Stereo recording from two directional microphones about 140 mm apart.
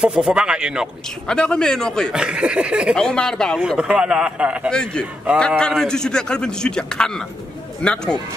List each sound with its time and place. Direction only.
0.0 s a man's voice: 5° right (ahead or behind)
1.2 s a man's voice: 5° left (ahead or behind)
2.1 s a sound: 5° right (ahead or behind)
3.0 s a man's voice: 5° left (ahead or behind)
4.6 s a man's voice: 5° left (ahead or behind)